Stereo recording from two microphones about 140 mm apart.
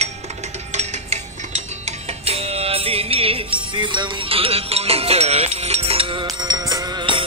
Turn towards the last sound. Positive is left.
turn(degrees=-35)  # may be behind; listen again after turning